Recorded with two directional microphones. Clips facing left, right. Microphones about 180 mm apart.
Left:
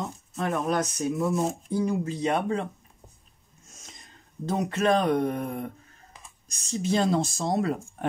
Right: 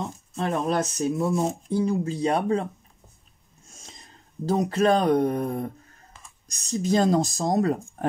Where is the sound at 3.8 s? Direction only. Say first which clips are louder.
Right 2 dB; 30° right (ahead or behind).